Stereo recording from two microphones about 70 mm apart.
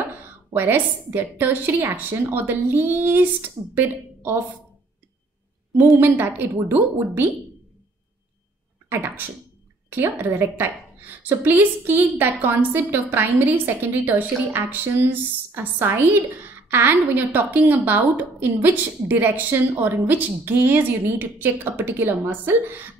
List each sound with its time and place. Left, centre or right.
0.2 s a woman's voice: right
5.8 s a woman's voice: right
8.8 s a woman's voice: right